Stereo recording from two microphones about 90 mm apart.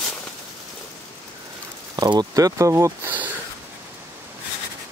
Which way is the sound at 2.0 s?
45° right (ahead or behind).